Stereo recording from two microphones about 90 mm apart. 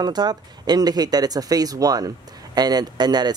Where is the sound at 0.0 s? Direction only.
50° right (ahead or behind).